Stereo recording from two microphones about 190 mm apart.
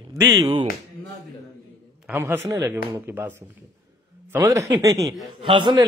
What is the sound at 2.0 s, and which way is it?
A man's voice, 10° right (ahead or behind).